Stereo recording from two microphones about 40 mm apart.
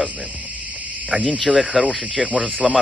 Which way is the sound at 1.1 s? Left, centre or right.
Centre.